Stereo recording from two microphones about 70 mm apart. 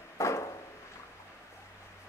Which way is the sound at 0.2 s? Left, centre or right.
Left.